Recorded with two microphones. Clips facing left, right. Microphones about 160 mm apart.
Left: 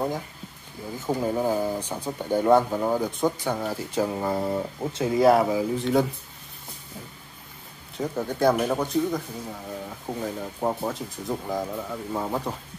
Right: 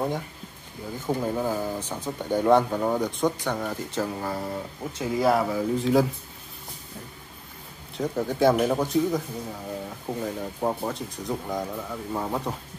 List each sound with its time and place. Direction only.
1.0 s speech: 10° left (ahead or behind)
4.1 s speech: 25° left (ahead or behind)
5.6 s speech: centre (ahead or behind)
8.0 s speech: centre (ahead or behind)